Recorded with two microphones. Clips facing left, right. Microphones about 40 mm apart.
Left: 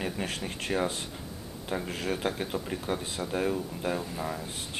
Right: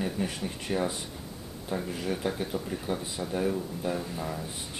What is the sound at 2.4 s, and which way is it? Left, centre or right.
Speech, left.